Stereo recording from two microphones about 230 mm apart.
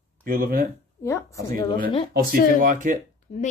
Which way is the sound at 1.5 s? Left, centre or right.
Centre.